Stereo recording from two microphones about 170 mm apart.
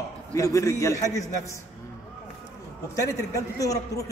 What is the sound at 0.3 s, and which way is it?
Speech, 20° left (ahead or behind).